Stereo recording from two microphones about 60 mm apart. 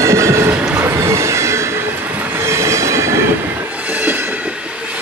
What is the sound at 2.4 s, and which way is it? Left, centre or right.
Train, right.